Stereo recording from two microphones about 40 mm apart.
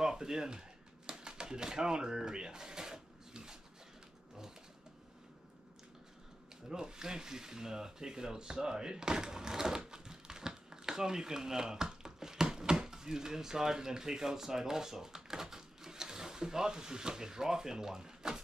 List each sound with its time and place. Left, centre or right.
0.0 s typewriter: centre
6.7 s speech: centre